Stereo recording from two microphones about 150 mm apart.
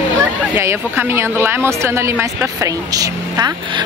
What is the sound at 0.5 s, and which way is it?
Speech, 15° right (ahead or behind).